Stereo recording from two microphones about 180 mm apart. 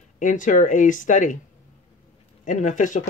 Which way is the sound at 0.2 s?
45° left (ahead or behind).